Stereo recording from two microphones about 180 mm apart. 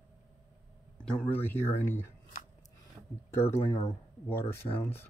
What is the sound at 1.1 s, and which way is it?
Speech, 10° left (ahead or behind).